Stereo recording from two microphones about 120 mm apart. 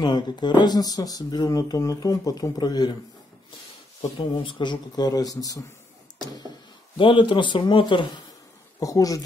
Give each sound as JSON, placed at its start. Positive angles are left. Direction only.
{"t": 0.0, "sound": "speech", "side_deg": 40}
{"t": 4.4, "sound": "speech", "side_deg": 40}
{"t": 7.0, "sound": "speech", "side_deg": 45}
{"t": 8.7, "sound": "speech", "side_deg": 30}